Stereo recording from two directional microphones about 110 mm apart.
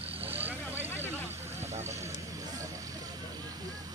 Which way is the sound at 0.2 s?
20° right (ahead or behind).